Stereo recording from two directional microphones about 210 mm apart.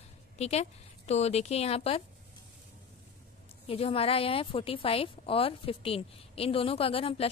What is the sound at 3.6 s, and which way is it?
A woman's voice, 25° left (ahead or behind).